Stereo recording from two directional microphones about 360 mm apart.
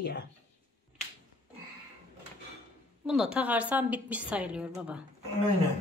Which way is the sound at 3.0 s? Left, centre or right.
Centre.